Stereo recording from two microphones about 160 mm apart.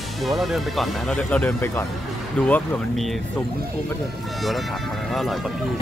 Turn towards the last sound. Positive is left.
turn(degrees=0)  # may be behind; listen again after turning